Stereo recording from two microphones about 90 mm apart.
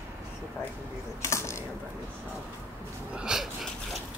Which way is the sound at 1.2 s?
35° left (ahead or behind).